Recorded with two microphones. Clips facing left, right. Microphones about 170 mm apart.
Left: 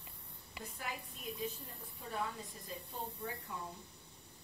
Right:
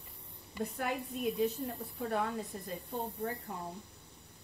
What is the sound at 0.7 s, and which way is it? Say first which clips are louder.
Speech: right 8 dB; 65° right (ahead or behind).